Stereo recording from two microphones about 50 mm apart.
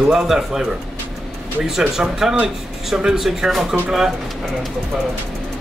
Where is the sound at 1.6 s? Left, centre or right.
Centre.